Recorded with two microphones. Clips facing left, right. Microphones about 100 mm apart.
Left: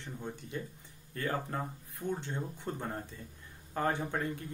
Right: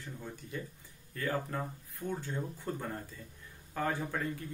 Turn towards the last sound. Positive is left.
turn(degrees=20)  # may be behind; listen again after turning